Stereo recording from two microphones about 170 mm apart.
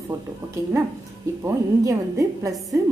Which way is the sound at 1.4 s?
20° right (ahead or behind).